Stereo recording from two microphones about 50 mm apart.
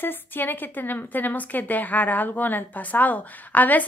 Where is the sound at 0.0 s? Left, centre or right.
Left.